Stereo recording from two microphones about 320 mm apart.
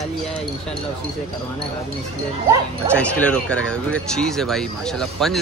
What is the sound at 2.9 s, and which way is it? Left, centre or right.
Speech, centre.